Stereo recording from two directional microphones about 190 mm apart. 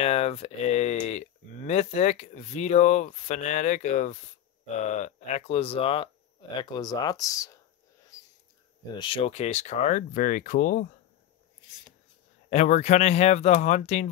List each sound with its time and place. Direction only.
0.0 s speech: 30° left (ahead or behind)
8.1 s a sound: 20° left (ahead or behind)
8.9 s speech: 25° left (ahead or behind); by 10.9 s 45° left (ahead or behind)
12.4 s speech: 40° left (ahead or behind)